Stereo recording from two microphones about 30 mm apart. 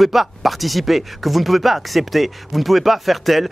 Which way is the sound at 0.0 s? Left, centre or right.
Centre.